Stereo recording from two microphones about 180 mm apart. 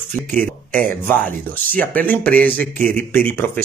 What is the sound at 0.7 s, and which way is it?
Speech, 50° right (ahead or behind).